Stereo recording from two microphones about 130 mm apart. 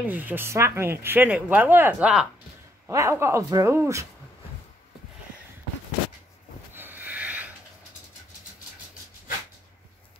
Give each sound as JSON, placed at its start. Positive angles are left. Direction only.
{"t": 0.0, "sound": "speech", "side_deg": -15}
{"t": 2.9, "sound": "speech", "side_deg": -25}
{"t": 6.7, "sound": "snort", "side_deg": -15}